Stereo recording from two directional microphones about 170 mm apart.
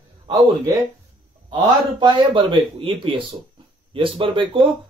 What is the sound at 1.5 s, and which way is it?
Speech, 25° right (ahead or behind).